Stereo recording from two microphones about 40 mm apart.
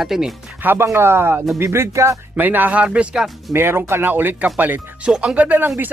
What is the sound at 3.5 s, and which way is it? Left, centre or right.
Speech, right.